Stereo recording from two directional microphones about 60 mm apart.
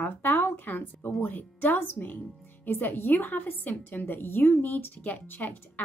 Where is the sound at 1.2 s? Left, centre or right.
Left.